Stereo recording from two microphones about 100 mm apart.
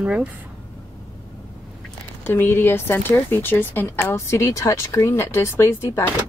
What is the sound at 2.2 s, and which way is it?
Speech, 20° left (ahead or behind).